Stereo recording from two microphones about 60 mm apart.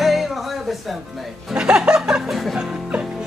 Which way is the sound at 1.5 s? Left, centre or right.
Centre.